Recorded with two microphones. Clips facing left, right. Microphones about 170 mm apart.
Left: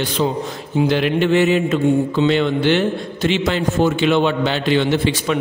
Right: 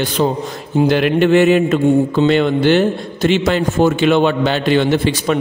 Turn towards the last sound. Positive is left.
turn(degrees=-45)  # may be behind; listen again after turning